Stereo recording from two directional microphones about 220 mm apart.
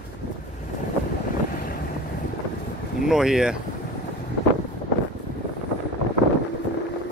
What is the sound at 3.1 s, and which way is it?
Speech, centre (ahead or behind).